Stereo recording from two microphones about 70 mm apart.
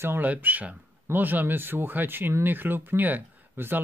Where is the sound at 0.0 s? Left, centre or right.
Right.